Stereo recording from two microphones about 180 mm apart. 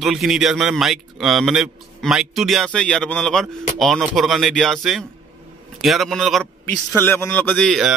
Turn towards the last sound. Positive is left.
turn(degrees=0)  # may be behind; listen again after turning